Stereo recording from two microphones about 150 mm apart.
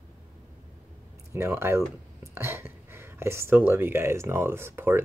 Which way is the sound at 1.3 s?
15° right (ahead or behind).